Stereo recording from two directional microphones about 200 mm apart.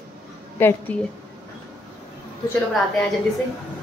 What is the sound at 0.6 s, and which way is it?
Speech, 10° left (ahead or behind).